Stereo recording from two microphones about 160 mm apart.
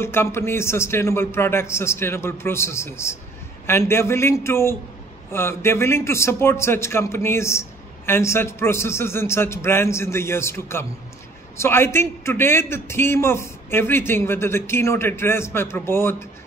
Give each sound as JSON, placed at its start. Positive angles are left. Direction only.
{"t": 0.0, "sound": "a man's voice", "side_deg": 15}